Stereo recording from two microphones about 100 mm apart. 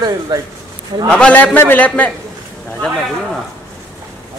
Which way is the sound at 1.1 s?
10° left (ahead or behind).